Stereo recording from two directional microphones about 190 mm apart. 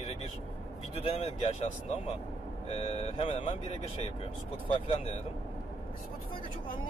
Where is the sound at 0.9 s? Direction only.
30° left (ahead or behind).